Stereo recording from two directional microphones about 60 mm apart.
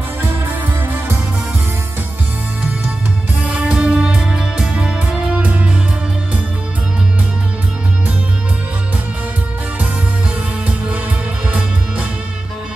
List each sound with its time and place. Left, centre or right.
0.8 s music: right
3.4 s music: right